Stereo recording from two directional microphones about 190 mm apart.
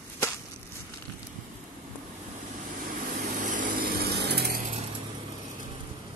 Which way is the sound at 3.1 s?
45° right (ahead or behind).